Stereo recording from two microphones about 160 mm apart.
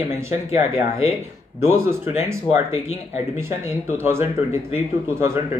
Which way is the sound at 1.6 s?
15° right (ahead or behind).